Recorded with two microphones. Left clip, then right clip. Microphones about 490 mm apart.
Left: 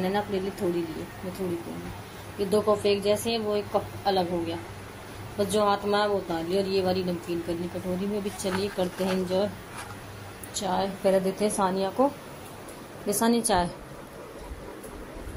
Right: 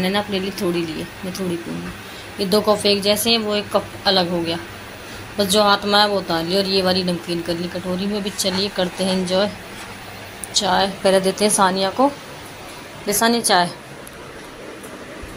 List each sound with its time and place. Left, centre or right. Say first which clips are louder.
0.0 s speech: right 6 dB; left
2.3 s speech: right 7 dB; left
10.6 s a woman's voice: right 9 dB; left